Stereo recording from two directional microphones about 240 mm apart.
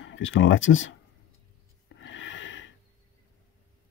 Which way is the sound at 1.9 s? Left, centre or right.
Left.